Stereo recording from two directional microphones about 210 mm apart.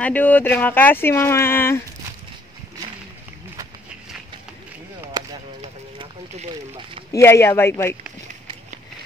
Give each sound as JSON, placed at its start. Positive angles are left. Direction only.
{"t": 0.0, "sound": "speech", "side_deg": 10}
{"t": 5.1, "sound": "a sound", "side_deg": -20}
{"t": 7.1, "sound": "speech", "side_deg": 15}